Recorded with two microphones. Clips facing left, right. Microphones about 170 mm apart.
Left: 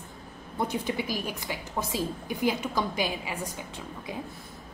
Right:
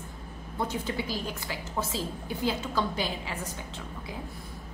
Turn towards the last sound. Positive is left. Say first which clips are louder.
# left 2 dB
turn(degrees=15)  # may be behind; listen again after turning